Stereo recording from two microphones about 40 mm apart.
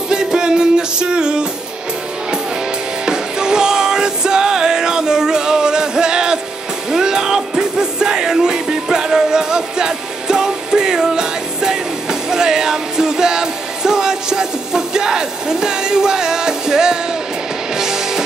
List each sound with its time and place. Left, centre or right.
0.1 s music: centre
3.1 s music: centre